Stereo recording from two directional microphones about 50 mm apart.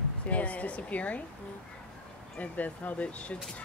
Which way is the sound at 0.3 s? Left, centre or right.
Left.